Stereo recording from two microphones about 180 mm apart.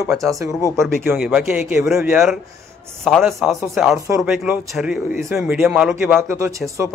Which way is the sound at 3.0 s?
Centre (ahead or behind).